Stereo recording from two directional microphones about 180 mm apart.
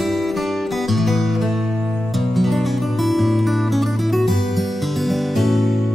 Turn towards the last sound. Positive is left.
turn(degrees=0)  # may be behind; listen again after turning